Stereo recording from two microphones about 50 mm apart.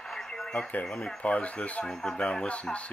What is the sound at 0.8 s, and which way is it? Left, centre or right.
Speech, left.